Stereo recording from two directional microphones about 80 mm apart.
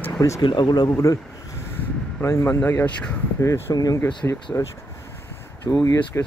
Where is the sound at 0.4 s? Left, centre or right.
Left.